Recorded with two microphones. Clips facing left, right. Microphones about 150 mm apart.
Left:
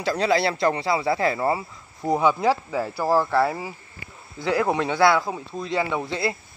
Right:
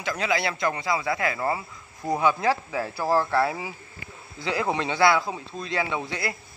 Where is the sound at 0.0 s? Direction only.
35° left (ahead or behind); by 3.4 s 5° left (ahead or behind).